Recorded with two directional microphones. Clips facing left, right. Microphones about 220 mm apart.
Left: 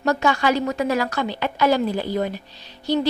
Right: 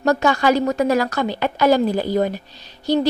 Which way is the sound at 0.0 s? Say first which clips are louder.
Right 3 dB; 40° right (ahead or behind).